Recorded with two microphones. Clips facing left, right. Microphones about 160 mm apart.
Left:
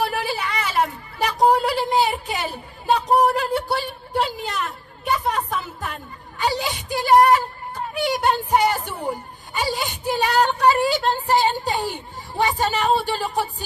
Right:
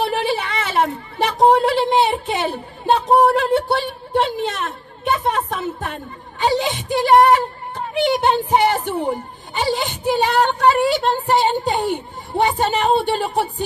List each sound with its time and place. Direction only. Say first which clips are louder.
0.0 s a woman's voice: right 4 dB; 25° right (ahead or behind)